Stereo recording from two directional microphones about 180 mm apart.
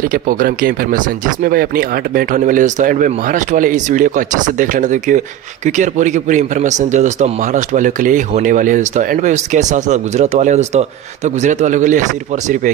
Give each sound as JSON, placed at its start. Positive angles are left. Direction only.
{"t": 0.1, "sound": "speech", "side_deg": -50}